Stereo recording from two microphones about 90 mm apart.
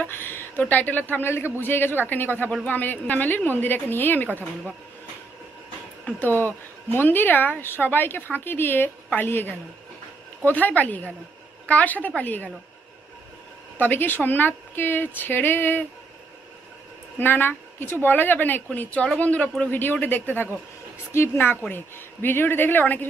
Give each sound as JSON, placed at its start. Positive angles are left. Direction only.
{"t": 0.0, "sound": "a woman's voice", "side_deg": 25}
{"t": 6.2, "sound": "speech", "side_deg": -25}
{"t": 6.9, "sound": "a woman's voice", "side_deg": 25}
{"t": 13.7, "sound": "a woman's voice", "side_deg": 20}
{"t": 17.2, "sound": "a woman's voice", "side_deg": 25}